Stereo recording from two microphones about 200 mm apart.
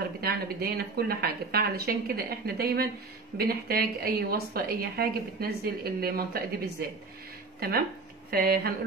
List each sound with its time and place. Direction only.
0.2 s a woman's voice: 50° right (ahead or behind)
8.3 s a woman's voice: 50° right (ahead or behind)